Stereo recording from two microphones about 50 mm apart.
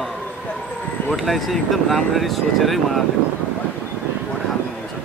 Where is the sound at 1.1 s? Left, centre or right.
Centre.